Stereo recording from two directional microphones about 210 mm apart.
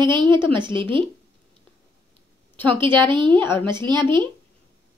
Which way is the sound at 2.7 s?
25° right (ahead or behind).